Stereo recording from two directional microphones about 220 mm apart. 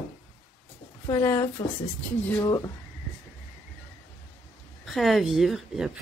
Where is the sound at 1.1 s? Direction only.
15° left (ahead or behind).